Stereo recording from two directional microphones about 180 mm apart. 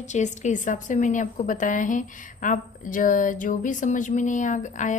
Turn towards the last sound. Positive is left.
turn(degrees=45)  # may be behind; listen again after turning